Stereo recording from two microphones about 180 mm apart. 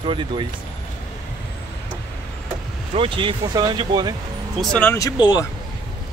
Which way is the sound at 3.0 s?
30° right (ahead or behind).